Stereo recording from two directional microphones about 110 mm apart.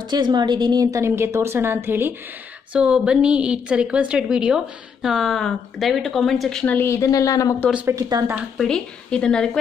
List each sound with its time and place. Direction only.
0.1 s a woman's voice: 40° right (ahead or behind)
0.9 s a woman's voice: 25° right (ahead or behind)
2.7 s a woman's voice: 10° right (ahead or behind)
6.6 s speech: 20° left (ahead or behind)
7.8 s speech: 30° right (ahead or behind)
8.5 s a woman's voice: 5° left (ahead or behind)